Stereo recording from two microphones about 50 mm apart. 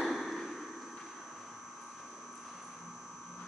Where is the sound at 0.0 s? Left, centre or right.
Centre.